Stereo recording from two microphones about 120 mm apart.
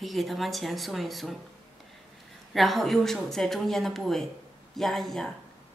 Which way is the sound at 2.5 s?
Centre (ahead or behind).